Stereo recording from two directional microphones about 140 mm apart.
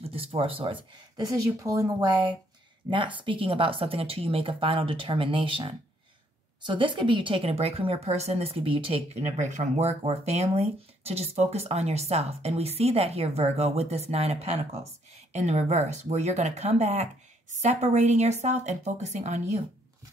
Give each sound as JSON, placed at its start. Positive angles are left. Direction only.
{"t": 0.1, "sound": "a woman's voice", "side_deg": -45}